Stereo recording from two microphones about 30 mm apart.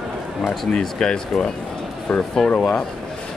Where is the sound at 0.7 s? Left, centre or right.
Left.